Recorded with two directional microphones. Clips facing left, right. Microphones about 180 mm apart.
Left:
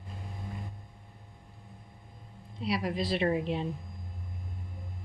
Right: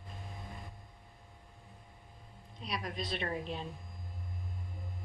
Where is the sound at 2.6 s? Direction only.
25° left (ahead or behind).